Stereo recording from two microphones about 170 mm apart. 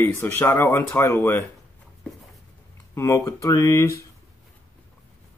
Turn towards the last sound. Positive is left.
turn(degrees=15)  # may be behind; listen again after turning